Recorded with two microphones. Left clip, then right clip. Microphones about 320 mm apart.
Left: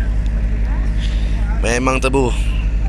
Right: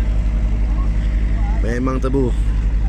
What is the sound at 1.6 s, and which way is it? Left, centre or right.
Speech, left.